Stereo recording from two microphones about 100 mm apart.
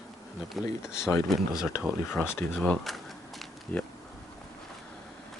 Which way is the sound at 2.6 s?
5° left (ahead or behind).